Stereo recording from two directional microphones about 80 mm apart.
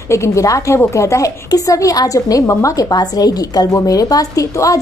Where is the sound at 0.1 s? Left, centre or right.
Left.